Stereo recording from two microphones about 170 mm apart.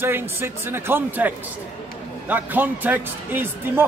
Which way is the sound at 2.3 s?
10° right (ahead or behind).